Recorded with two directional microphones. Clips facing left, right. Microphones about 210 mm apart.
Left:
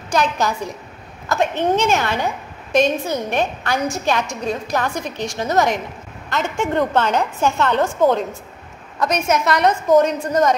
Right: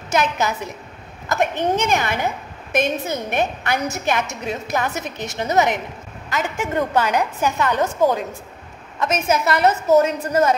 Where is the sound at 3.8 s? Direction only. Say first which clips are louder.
Left 2 dB; 20° right (ahead or behind).